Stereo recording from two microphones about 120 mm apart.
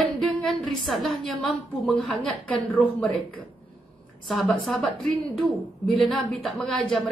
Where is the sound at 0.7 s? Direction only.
Centre (ahead or behind).